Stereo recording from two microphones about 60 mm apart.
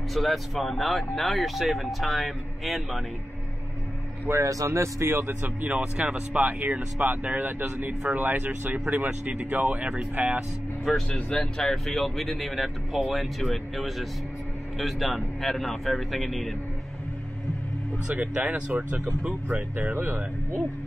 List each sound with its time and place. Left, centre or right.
0.1 s speech: centre
4.3 s speech: right
4.6 s speech: right
5.0 s speech: right
5.6 s speech: right
6.6 s speech: right
11.1 s speech: centre
11.6 s speech: centre
18.1 s speech: right
19.9 s speech: right